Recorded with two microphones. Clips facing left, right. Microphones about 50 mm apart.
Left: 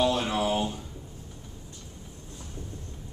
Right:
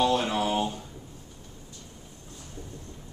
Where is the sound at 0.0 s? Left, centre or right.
Centre.